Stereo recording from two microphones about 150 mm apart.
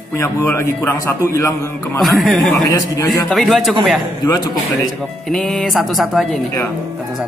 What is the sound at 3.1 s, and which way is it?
Speech, centre (ahead or behind).